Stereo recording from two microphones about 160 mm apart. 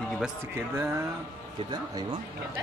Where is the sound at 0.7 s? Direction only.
15° right (ahead or behind).